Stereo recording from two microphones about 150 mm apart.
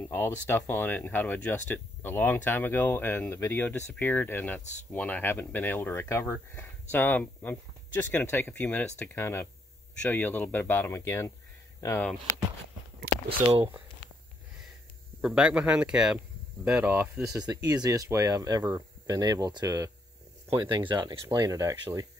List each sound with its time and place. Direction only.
0.1 s speech: 15° left (ahead or behind)
15.2 s speech: 5° right (ahead or behind)
17.3 s speech: 25° right (ahead or behind)